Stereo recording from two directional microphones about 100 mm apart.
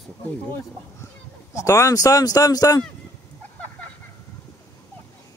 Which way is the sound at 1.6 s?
35° left (ahead or behind).